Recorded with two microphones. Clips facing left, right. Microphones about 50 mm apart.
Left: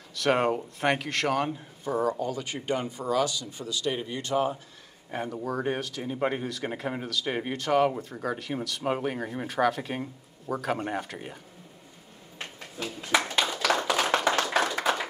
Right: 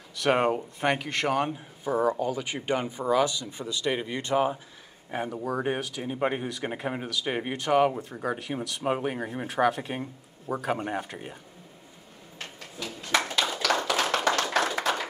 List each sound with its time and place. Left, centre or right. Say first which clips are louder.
0.1 s speech: right 1 dB; centre; by 4.6 s right
5.1 s speech: right 1 dB; centre
12.4 s a sound: left 2 dB; centre
13.7 s tap: left 1 dB; centre
14.4 s clapping: even; centre
14.8 s a sound: left 1 dB; centre